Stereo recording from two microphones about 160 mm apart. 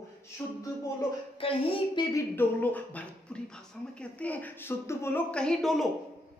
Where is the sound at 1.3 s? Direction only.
35° left (ahead or behind).